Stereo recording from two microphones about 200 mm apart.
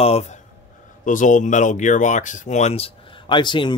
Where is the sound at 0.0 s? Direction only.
30° left (ahead or behind).